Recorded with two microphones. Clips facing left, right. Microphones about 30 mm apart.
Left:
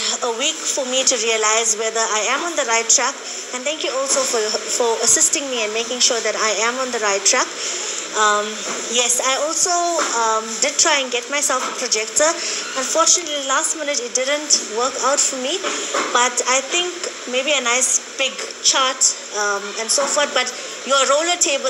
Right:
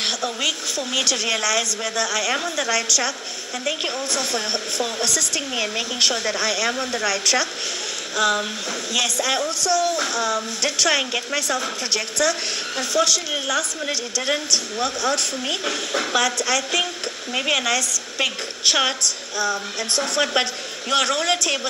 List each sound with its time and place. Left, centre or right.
0.4 s a woman's voice: right
4.0 s a woman's voice: right
10.9 s a woman's voice: right
15.4 s a woman's voice: right
17.7 s a woman's voice: right
18.2 s a woman's voice: right
20.0 s a woman's voice: right